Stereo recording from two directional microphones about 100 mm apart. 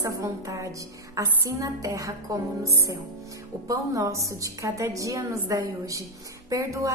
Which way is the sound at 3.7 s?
35° right (ahead or behind).